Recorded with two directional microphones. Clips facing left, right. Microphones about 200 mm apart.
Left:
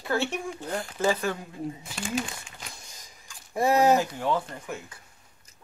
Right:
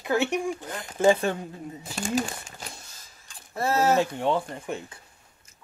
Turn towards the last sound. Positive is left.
turn(degrees=-30)  # may be behind; listen again after turning